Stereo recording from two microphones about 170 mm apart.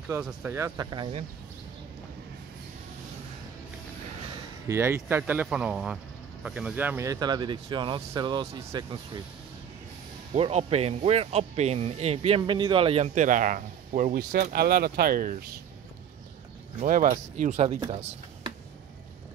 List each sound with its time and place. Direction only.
0.2 s speech: 10° right (ahead or behind)
4.6 s speech: 15° right (ahead or behind)
10.3 s speech: 35° right (ahead or behind); by 15.3 s 60° right (ahead or behind)
16.8 s speech: 50° right (ahead or behind)